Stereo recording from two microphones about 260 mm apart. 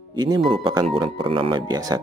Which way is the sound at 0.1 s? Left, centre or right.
Centre.